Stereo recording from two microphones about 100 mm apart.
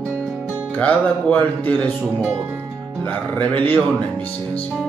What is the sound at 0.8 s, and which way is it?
Speech, 15° left (ahead or behind).